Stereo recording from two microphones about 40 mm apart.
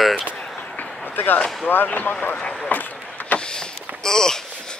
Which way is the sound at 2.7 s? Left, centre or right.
Left.